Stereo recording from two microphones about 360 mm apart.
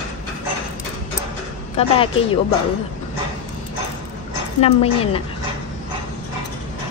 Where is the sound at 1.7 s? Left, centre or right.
Centre.